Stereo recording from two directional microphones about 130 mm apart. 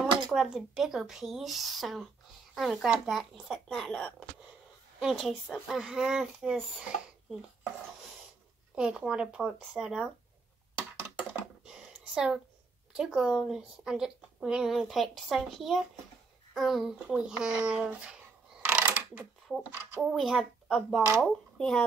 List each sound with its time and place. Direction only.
0.3 s speech: centre (ahead or behind)
8.7 s speech: 5° right (ahead or behind)
11.6 s a sound: 5° right (ahead or behind)
12.9 s speech: 5° right (ahead or behind)
18.6 s mechanisms: 15° right (ahead or behind)
20.0 s speech: centre (ahead or behind)